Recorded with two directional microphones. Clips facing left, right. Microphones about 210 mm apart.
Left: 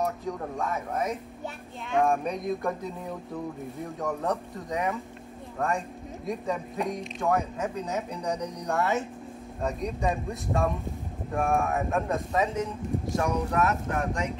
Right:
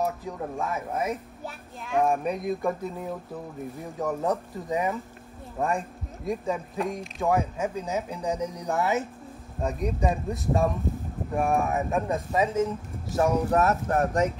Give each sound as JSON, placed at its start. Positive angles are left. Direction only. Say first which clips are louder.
{"t": 0.0, "sound": "speech", "louder": "right 1 dB", "side_deg": -5}
{"t": 13.5, "sound": "speech", "louder": "right 3 dB", "side_deg": -40}